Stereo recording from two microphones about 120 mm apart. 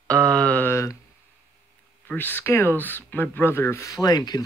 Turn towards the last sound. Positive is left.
turn(degrees=35)  # may be behind; listen again after turning